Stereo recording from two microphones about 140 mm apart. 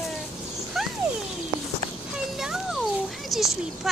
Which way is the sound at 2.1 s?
5° right (ahead or behind).